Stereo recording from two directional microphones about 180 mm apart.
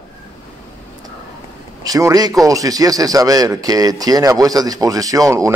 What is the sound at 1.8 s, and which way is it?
Speech, 20° right (ahead or behind).